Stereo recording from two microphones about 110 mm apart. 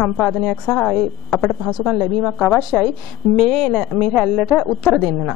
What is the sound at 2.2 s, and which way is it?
A woman's voice, 5° left (ahead or behind).